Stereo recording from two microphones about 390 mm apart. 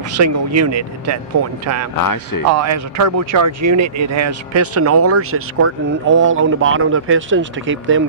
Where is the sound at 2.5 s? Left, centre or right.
Right.